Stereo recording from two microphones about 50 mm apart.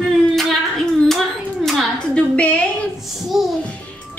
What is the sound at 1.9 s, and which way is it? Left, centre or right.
Speech, left.